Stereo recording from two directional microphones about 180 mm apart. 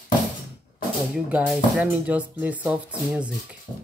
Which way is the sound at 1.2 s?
5° right (ahead or behind).